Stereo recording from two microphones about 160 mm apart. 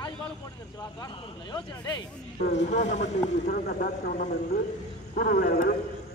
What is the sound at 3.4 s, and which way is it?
Speech, 70° left (ahead or behind).